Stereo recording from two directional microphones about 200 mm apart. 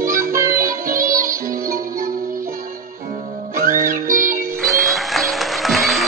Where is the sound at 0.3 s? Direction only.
15° right (ahead or behind).